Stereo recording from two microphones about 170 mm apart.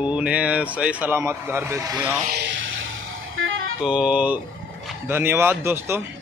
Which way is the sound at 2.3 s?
85° right.